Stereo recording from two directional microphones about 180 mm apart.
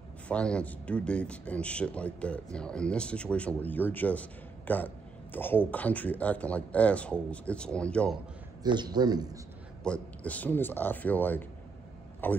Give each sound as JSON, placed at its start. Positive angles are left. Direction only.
{"t": 0.3, "sound": "a man's voice", "side_deg": 5}
{"t": 8.6, "sound": "a man's voice", "side_deg": -25}
{"t": 9.8, "sound": "a man's voice", "side_deg": 10}